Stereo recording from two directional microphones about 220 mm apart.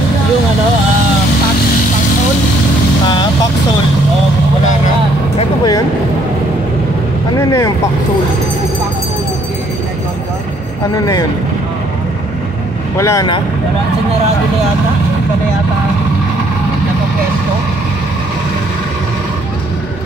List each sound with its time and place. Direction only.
5.4 s a sound: 20° left (ahead or behind)
7.3 s speech: 15° left (ahead or behind)
12.9 s speech: 15° left (ahead or behind)